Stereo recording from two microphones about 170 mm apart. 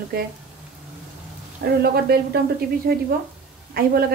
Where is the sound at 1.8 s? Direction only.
65° right (ahead or behind).